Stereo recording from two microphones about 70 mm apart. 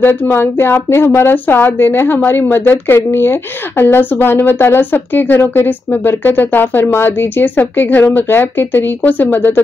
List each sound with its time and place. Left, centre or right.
0.0 s speech: left